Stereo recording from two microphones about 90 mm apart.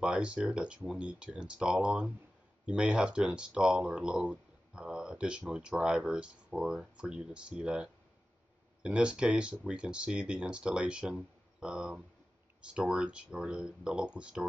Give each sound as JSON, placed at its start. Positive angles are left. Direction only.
{"t": 0.0, "sound": "speech", "side_deg": -10}